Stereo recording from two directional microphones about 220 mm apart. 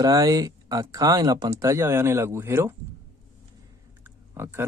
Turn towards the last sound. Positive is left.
turn(degrees=-10)  # may be behind; listen again after turning